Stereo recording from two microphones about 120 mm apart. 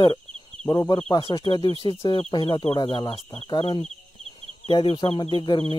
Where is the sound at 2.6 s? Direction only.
50° left (ahead or behind).